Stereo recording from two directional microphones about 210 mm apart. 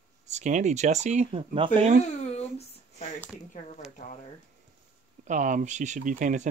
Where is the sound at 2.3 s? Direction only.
30° left (ahead or behind).